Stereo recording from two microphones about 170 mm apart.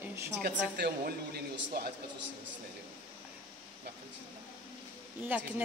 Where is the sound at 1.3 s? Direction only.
65° right (ahead or behind).